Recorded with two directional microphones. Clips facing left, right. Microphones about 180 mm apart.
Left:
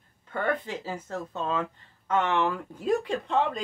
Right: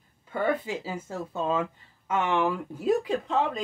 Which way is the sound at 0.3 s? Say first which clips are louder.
Right 2 dB; 10° right (ahead or behind).